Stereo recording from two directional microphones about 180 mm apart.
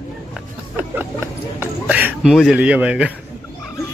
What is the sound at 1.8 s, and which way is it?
Speech, 10° right (ahead or behind).